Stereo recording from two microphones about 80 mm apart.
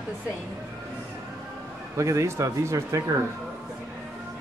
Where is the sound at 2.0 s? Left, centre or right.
Right.